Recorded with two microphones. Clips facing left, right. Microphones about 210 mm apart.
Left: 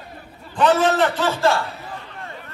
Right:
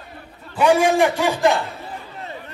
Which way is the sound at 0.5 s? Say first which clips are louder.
Right 2 dB; 10° right (ahead or behind).